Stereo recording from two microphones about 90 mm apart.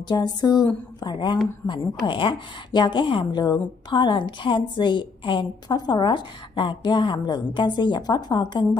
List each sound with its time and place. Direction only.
0.1 s a woman's voice: 50° left (ahead or behind)
1.7 s a woman's voice: 65° left (ahead or behind)